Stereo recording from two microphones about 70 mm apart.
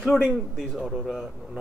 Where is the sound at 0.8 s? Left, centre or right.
Centre.